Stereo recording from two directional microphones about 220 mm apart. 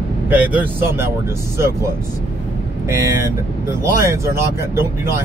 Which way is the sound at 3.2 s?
10° right (ahead or behind).